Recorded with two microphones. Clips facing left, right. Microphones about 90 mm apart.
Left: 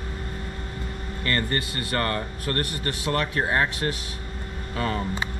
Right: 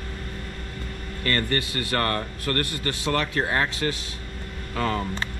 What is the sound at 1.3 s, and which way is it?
Speech, 15° left (ahead or behind).